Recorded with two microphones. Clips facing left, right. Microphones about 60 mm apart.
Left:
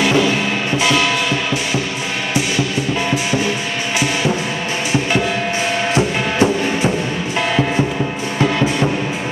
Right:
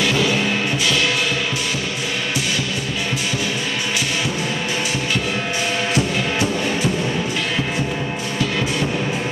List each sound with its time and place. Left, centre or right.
5.9 s music: left